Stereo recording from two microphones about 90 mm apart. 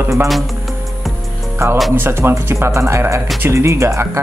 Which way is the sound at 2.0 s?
30° right (ahead or behind).